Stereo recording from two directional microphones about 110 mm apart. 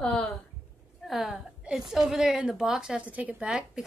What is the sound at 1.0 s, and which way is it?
A woman's voice, centre (ahead or behind).